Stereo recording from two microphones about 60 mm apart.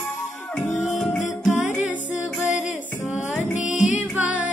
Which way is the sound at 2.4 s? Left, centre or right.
Centre.